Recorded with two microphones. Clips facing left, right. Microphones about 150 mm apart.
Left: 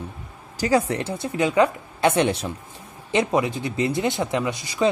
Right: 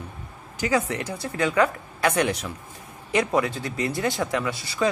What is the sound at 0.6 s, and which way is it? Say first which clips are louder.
Speech: left 3 dB; 35° left (ahead or behind).